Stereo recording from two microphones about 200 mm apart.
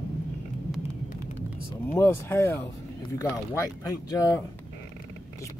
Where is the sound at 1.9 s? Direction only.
10° left (ahead or behind).